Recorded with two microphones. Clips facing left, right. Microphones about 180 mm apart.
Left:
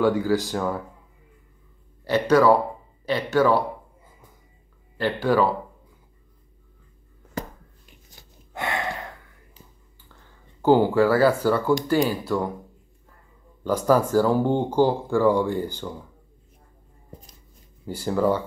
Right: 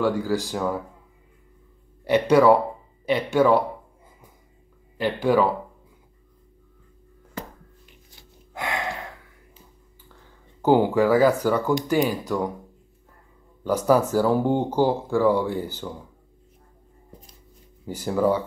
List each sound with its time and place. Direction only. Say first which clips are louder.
0.0 s speech: left 2 dB; centre (ahead or behind)
2.0 s speech: right 1 dB; 20° right (ahead or behind)
4.9 s speech: right 1 dB; 15° right (ahead or behind)
8.5 s gasp: left 1 dB; centre (ahead or behind)
10.7 s speech: even; 15° right (ahead or behind)
13.7 s speech: even; 10° right (ahead or behind)
17.8 s speech: even; 10° right (ahead or behind)